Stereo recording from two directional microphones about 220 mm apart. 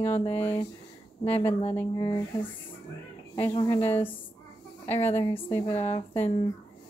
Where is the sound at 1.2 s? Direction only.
25° left (ahead or behind).